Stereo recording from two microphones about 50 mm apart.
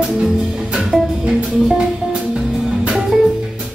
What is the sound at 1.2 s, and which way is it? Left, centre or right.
Music, centre.